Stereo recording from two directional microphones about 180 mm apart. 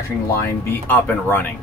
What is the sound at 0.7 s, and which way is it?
Speech, 10° left (ahead or behind).